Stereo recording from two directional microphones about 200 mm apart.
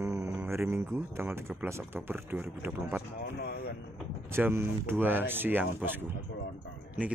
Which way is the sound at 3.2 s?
55° left (ahead or behind).